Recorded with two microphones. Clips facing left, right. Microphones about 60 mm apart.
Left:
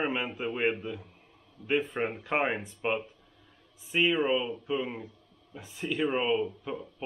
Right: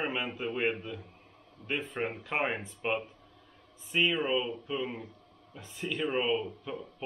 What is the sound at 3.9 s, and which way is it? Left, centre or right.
Speech, centre.